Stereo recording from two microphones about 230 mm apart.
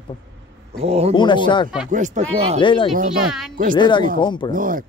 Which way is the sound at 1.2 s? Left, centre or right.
Centre.